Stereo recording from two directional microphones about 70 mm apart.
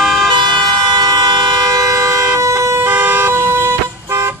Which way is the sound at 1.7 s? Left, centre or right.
Right.